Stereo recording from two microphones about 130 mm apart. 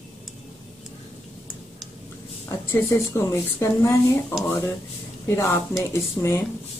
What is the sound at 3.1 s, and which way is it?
Speech, 20° left (ahead or behind).